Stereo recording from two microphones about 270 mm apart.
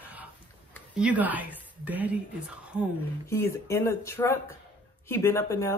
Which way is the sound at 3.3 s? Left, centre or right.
Centre.